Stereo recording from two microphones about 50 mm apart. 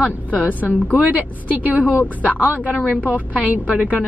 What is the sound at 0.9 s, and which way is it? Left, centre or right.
A woman's voice, right.